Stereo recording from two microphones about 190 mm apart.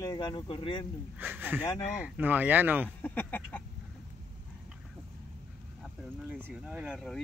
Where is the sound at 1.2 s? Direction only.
10° right (ahead or behind).